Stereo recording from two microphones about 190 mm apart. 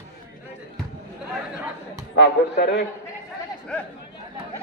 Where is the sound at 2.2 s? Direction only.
65° left (ahead or behind).